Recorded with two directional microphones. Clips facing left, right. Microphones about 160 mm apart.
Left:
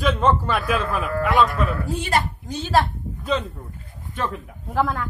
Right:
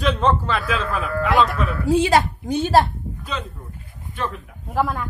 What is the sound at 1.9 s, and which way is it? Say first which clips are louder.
Speech: right 7 dB; 85° right.